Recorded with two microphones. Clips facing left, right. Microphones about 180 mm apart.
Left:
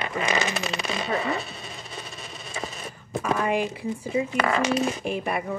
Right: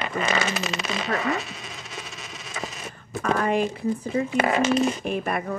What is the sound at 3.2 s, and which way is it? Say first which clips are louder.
Speech: right 2 dB; 10° left (ahead or behind).